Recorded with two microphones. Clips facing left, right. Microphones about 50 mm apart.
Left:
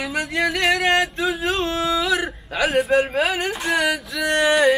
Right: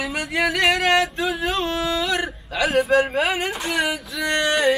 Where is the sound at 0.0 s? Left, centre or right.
Centre.